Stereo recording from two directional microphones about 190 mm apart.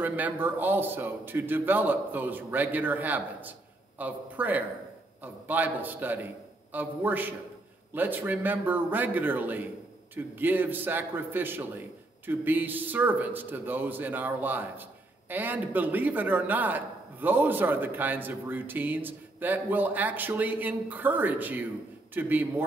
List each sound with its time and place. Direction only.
0.0 s a man's voice: 10° right (ahead or behind)